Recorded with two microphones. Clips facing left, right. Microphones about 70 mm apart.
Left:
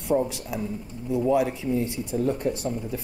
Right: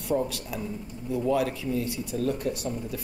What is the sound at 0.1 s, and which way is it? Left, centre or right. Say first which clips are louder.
Speech: left 3 dB; centre.